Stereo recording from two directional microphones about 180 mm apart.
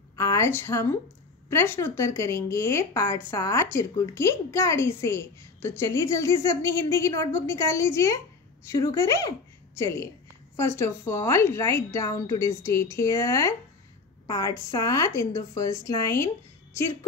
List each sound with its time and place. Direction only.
0.1 s a woman's voice: 15° left (ahead or behind)